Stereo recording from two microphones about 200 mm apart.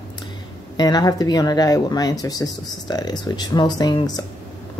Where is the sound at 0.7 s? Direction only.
20° left (ahead or behind).